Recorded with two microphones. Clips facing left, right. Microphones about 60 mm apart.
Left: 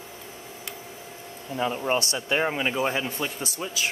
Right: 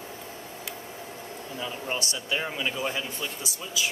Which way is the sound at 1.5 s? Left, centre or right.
Left.